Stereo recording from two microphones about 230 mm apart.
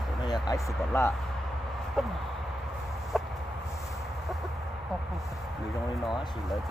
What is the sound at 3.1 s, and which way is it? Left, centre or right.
Chicken, centre.